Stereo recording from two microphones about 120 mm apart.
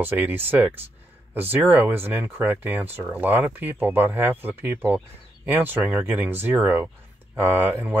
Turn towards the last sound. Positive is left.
turn(degrees=-15)  # may be behind; listen again after turning